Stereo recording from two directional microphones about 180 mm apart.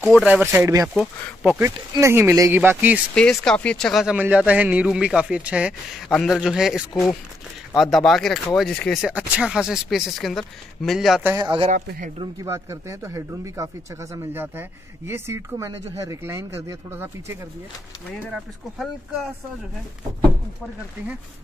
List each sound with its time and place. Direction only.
0.0 s speech: centre (ahead or behind)
0.9 s speech: 5° left (ahead or behind)
1.6 s speech: 15° right (ahead or behind)
3.2 s speech: 5° left (ahead or behind)
11.2 s speech: 20° right (ahead or behind)
11.7 s speech: 45° right (ahead or behind)
12.4 s speech: 15° right (ahead or behind)
18.1 s speech: centre (ahead or behind)